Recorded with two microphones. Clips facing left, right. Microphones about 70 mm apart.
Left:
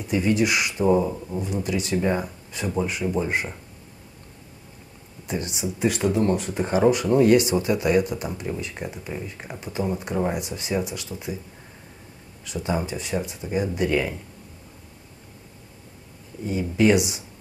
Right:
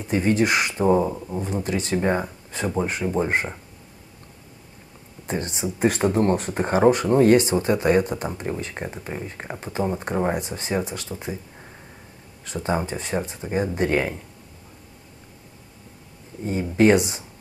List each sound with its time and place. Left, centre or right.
0.1 s speech: right
1.1 s speech: centre
1.4 s speech: right
5.2 s speech: right
12.4 s speech: right
16.4 s speech: right